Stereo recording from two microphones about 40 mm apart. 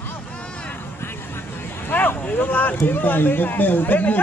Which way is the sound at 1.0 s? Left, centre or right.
Left.